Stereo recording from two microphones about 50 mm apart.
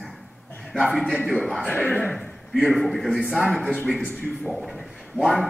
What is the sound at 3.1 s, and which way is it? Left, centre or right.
Speech, centre.